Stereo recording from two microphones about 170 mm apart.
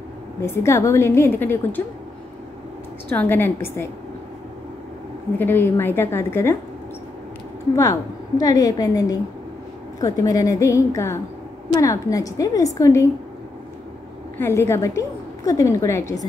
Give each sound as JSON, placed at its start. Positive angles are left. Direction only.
{"t": 0.4, "sound": "a woman's voice", "side_deg": 15}
{"t": 3.1, "sound": "a woman's voice", "side_deg": 10}
{"t": 5.4, "sound": "a woman's voice", "side_deg": 10}
{"t": 7.7, "sound": "a woman's voice", "side_deg": 20}
{"t": 14.4, "sound": "a woman's voice", "side_deg": 15}